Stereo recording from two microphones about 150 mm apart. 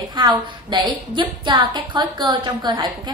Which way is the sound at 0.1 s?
30° right (ahead or behind).